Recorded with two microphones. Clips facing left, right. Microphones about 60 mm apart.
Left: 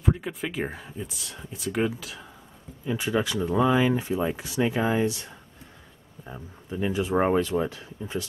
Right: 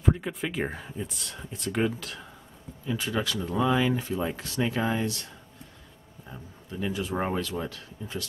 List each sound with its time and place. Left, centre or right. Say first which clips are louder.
0.0 s speech: even; centre
2.8 s speech: left 3 dB; centre